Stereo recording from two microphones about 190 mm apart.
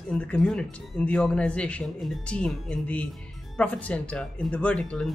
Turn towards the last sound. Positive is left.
turn(degrees=5)  # may be behind; listen again after turning